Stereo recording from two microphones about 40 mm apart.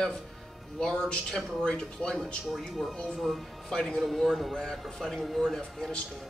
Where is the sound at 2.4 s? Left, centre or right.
Centre.